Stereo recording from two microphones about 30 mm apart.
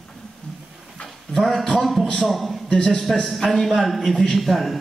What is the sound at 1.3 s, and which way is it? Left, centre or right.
Speech, left.